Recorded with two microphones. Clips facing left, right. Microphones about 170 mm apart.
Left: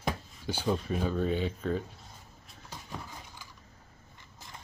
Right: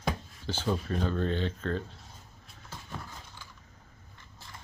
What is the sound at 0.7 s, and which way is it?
Speech, 5° left (ahead or behind).